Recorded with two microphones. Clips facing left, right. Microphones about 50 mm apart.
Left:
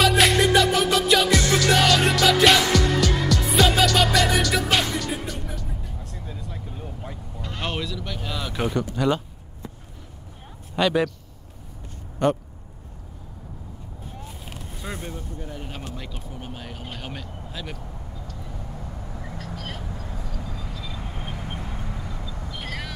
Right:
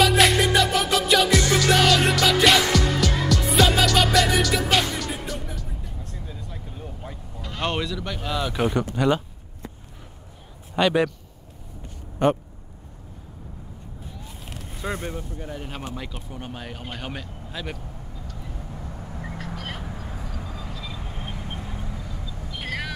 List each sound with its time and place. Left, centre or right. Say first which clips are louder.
0.0 s music: even; centre
6.1 s vehicle: left 1 dB; centre
7.6 s a sound: right 3 dB; centre
8.9 s speech: right 1 dB; centre
10.8 s speech: right 1 dB; centre
12.2 s speech: right 1 dB; centre
15.0 s speech: right 2 dB; right
15.5 s speech: right 5 dB; centre
19.1 s vehicle: right 2 dB; centre
21.8 s vehicle: left 1 dB; centre
22.5 s vehicle: right 4 dB; centre